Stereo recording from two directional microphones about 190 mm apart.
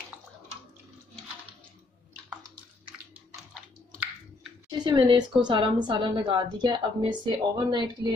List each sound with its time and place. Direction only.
4.6 s a woman's voice: 25° right (ahead or behind)